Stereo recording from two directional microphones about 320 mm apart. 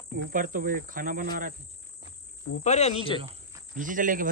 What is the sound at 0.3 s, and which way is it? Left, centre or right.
Speech, right.